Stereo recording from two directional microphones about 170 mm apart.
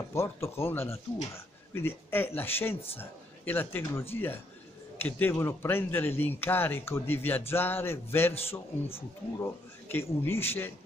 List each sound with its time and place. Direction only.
0.1 s speech: 15° left (ahead or behind)